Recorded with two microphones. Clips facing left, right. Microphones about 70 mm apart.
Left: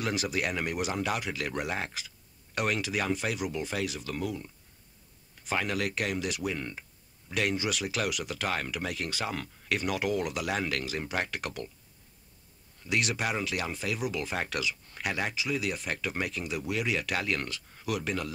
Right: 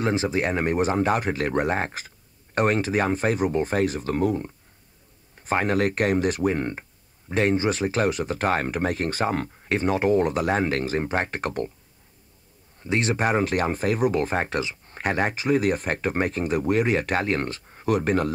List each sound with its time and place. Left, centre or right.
0.0 s speech: right
12.8 s speech: right